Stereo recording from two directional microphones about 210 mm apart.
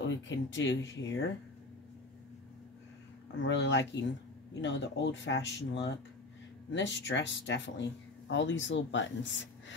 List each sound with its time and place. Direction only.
0.0 s speech: 60° left (ahead or behind)
3.4 s speech: 60° left (ahead or behind)